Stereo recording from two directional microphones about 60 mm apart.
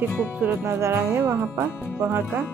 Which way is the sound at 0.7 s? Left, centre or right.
Right.